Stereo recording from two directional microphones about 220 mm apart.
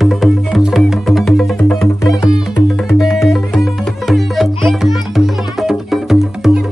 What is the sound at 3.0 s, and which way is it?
Music, centre (ahead or behind).